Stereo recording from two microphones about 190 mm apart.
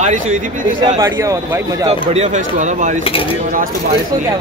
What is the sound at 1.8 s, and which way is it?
Speech, 35° right (ahead or behind).